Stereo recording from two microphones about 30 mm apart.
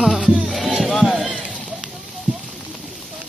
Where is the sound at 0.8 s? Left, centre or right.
Centre.